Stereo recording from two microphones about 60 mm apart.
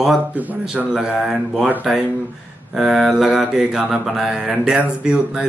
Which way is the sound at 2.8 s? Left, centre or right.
Centre.